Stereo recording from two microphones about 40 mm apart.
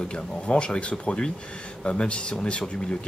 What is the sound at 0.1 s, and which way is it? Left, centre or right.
Speech, left.